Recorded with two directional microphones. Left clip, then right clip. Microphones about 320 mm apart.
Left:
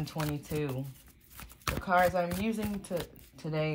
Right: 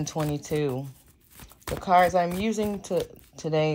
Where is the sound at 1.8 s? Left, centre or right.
Centre.